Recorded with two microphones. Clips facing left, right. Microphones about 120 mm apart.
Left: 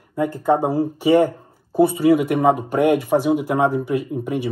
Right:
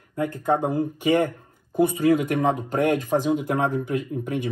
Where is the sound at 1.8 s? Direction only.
15° left (ahead or behind).